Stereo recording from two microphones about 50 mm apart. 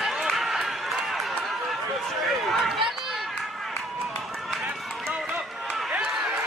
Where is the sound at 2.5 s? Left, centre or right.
Centre.